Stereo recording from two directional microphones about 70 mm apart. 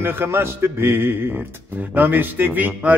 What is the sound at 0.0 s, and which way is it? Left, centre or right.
Music, right.